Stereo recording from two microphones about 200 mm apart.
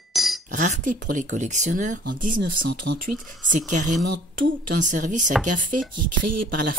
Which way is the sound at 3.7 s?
40° right (ahead or behind).